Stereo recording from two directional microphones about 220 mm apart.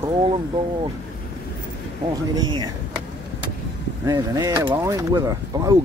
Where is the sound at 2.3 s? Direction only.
20° right (ahead or behind).